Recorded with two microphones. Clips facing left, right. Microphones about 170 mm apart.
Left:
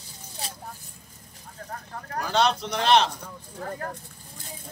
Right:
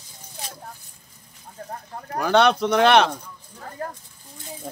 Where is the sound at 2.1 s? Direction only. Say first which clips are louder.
Right 6 dB; 60° right (ahead or behind).